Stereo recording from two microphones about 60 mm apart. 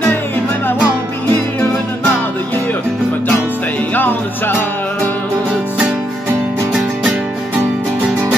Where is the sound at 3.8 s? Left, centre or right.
Left.